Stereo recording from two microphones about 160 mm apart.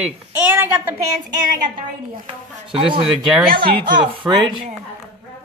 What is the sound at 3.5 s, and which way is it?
Speech, 65° right (ahead or behind).